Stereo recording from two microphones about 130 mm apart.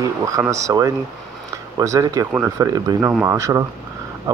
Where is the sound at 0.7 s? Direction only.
25° right (ahead or behind).